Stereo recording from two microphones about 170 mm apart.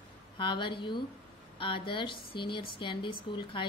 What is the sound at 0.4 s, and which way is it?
A woman's voice, 30° left (ahead or behind).